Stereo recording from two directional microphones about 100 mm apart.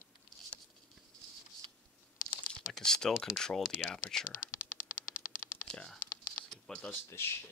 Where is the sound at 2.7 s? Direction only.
5° left (ahead or behind).